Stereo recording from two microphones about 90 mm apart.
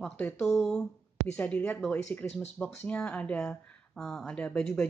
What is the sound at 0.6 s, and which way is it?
Speech, 5° left (ahead or behind).